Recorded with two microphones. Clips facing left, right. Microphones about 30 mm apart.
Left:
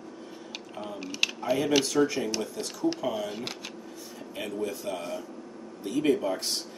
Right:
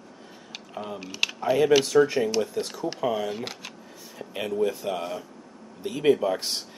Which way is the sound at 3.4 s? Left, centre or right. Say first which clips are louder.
Right 1 dB; centre.